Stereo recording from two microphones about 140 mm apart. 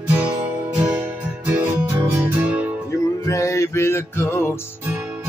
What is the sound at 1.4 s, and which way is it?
Music, 15° right (ahead or behind).